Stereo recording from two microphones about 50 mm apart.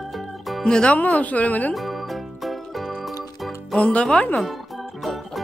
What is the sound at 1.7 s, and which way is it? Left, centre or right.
Music, centre.